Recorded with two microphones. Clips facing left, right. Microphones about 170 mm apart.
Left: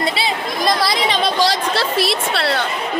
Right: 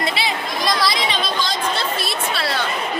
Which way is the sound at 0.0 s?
30° left (ahead or behind).